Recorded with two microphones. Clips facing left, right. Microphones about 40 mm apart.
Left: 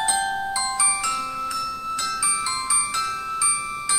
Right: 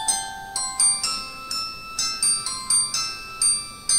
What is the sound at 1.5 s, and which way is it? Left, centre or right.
Music, left.